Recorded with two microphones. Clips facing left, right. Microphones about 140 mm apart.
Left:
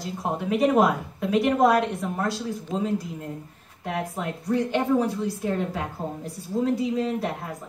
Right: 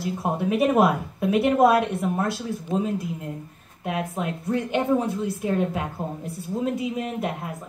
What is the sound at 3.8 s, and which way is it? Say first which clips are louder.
A woman's voice: right 2 dB; 20° right (ahead or behind).